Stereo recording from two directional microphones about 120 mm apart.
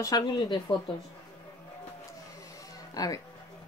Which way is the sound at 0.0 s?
35° left (ahead or behind).